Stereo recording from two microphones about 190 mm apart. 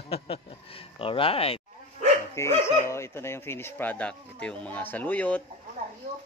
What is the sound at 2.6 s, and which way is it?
Speech, 15° left (ahead or behind).